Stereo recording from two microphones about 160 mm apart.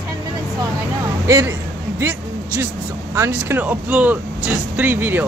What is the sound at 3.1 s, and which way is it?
Speech, 15° right (ahead or behind).